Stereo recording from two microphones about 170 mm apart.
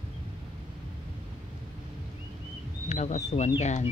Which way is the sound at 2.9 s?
45° left (ahead or behind).